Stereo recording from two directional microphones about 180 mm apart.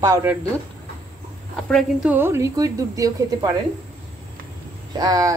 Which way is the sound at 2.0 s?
10° right (ahead or behind).